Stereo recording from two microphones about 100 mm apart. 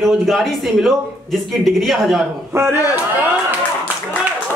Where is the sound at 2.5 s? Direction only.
25° right (ahead or behind).